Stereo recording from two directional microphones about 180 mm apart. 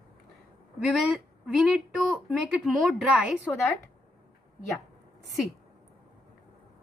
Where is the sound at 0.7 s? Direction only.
Centre (ahead or behind).